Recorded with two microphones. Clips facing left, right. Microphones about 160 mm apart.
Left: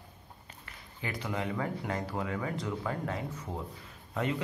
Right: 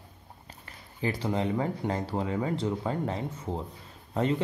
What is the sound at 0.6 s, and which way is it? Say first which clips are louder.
Speech: right 9 dB; 30° right (ahead or behind).